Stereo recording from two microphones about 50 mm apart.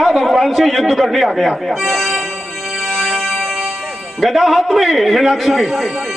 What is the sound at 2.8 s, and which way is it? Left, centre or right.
Music, centre.